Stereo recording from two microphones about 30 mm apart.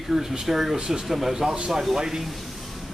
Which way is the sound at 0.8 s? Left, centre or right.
Right.